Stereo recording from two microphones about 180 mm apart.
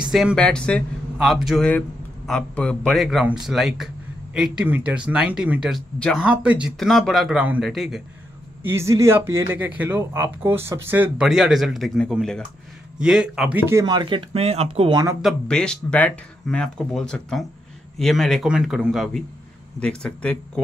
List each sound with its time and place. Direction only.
0.1 s speech: centre (ahead or behind)
8.6 s speech: 15° right (ahead or behind)
15.2 s speech: 5° left (ahead or behind)